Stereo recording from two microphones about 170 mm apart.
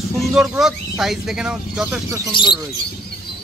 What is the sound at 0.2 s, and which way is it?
Speech, 5° right (ahead or behind).